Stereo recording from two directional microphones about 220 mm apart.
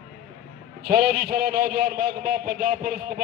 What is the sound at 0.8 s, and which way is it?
A man's voice, 45° right (ahead or behind).